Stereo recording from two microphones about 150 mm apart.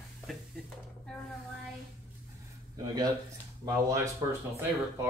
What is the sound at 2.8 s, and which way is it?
Speech, 25° right (ahead or behind).